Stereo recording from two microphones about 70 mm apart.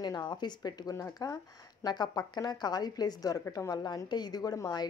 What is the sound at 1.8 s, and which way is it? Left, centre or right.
Speech, left.